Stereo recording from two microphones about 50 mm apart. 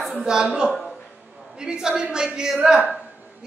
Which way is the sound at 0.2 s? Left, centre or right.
Centre.